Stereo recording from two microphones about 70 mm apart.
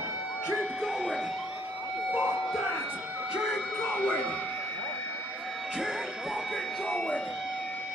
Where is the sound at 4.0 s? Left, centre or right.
Left.